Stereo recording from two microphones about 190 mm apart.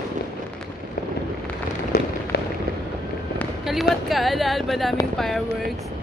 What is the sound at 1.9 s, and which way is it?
Fireworks, 55° left (ahead or behind).